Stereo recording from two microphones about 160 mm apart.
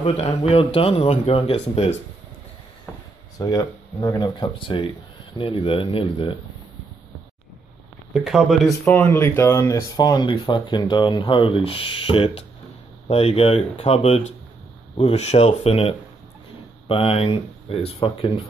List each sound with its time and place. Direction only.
0.0 s speech: 40° left (ahead or behind)
3.3 s speech: 25° left (ahead or behind)
8.1 s speech: 5° right (ahead or behind)
8.9 s speech: 10° left (ahead or behind); by 18.4 s 35° left (ahead or behind)